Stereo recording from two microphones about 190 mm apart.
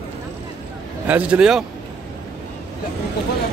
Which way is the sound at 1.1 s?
5° right (ahead or behind).